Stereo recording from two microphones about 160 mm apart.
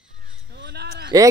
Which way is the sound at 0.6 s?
90° right.